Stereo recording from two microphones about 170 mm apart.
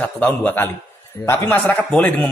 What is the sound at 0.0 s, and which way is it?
Speech, 10° left (ahead or behind).